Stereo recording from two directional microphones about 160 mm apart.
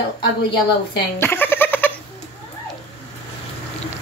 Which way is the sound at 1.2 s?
15° left (ahead or behind).